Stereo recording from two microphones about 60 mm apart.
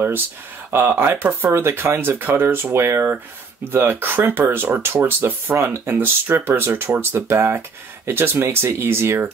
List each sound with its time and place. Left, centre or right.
0.7 s speech: right